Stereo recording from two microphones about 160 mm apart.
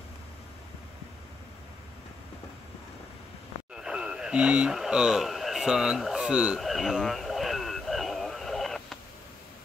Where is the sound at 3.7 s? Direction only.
5° right (ahead or behind).